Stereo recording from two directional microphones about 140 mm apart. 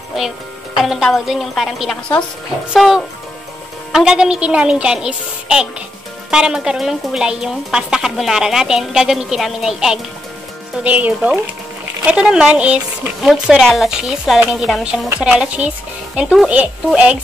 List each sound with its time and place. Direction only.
0.2 s a woman's voice: centre (ahead or behind)